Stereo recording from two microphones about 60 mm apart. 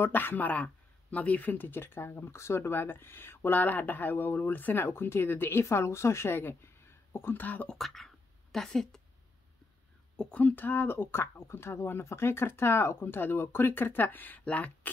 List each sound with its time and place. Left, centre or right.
0.0 s speech: left
7.7 s speech: centre
10.1 s speech: left